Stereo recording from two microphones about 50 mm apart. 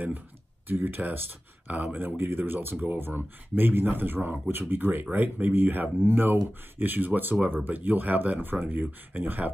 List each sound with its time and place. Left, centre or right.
0.7 s speech: right